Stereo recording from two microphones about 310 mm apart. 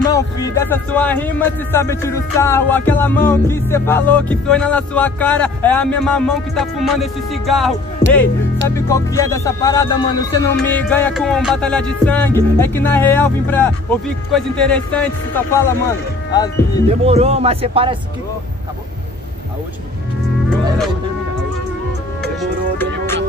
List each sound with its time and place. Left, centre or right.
0.1 s speech: centre
17.0 s speech: centre
20.4 s music: centre
22.4 s music: centre